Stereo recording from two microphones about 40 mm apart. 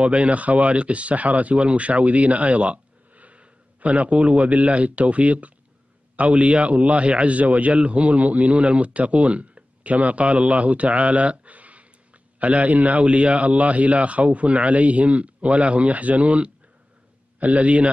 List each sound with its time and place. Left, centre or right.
0.0 s a man's voice: right